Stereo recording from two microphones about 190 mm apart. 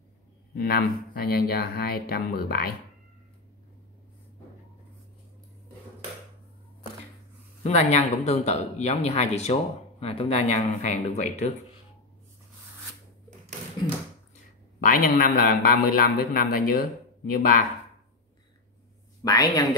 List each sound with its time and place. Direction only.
0.6 s speech: 55° left (ahead or behind)
7.6 s speech: 35° left (ahead or behind)
14.8 s speech: 45° left (ahead or behind)
19.2 s a woman's voice: 20° left (ahead or behind)